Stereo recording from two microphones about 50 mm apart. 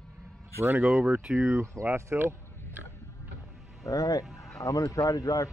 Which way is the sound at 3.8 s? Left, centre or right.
Left.